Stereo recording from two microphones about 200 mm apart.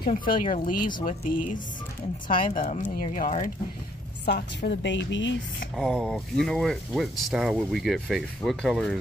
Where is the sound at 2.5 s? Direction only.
40° left (ahead or behind).